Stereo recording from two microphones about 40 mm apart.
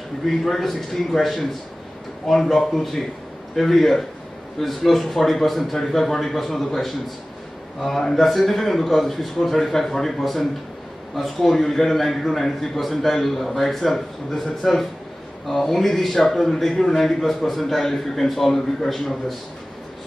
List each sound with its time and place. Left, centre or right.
0.5 s a man's voice: centre